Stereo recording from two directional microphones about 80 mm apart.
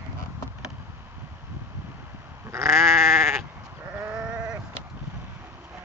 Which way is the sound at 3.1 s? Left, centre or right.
Right.